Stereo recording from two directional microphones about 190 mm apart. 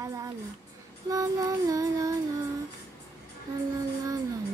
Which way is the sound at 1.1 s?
20° right (ahead or behind).